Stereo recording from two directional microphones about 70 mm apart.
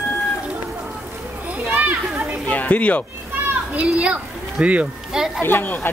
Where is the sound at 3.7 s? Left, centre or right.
Centre.